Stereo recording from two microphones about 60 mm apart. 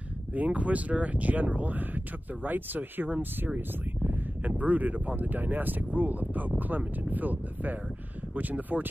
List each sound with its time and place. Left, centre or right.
0.3 s speech: right